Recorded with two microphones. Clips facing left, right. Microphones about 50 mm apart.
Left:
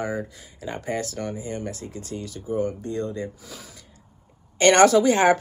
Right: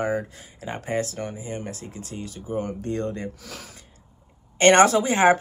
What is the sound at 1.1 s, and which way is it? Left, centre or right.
Speech, centre.